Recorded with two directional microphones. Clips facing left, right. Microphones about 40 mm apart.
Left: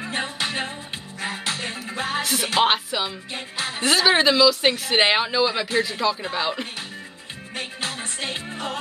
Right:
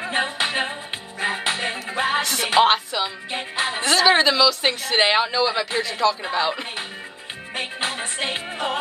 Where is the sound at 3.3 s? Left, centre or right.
Right.